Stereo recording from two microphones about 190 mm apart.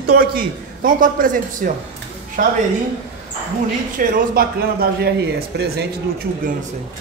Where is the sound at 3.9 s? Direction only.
45° right (ahead or behind).